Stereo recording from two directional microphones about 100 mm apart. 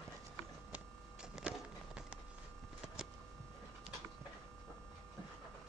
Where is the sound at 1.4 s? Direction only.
5° right (ahead or behind).